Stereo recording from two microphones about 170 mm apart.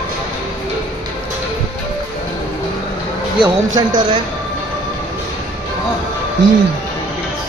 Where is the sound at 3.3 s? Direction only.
25° right (ahead or behind).